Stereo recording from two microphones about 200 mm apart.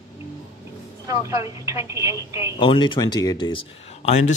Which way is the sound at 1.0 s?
15° right (ahead or behind).